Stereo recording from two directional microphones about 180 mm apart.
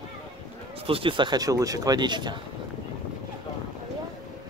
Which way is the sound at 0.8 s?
30° right (ahead or behind).